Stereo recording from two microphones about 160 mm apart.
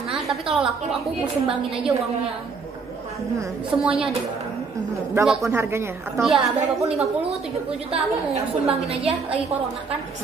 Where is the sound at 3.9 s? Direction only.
35° right (ahead or behind).